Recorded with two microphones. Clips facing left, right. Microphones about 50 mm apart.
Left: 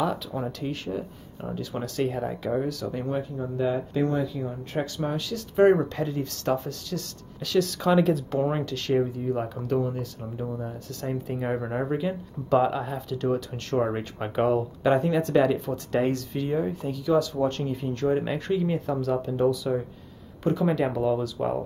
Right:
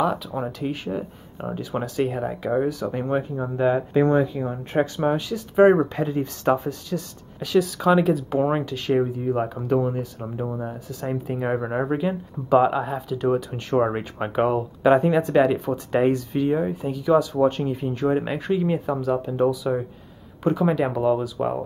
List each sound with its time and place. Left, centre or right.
0.0 s speech: centre
8.4 s speech: centre
10.9 s speech: centre